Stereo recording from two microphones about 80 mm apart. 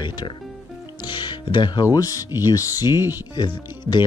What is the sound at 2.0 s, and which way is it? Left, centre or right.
Speech, left.